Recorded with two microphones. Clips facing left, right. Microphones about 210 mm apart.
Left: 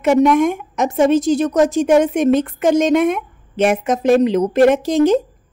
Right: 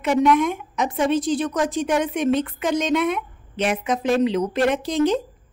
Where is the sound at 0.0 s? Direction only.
45° left (ahead or behind).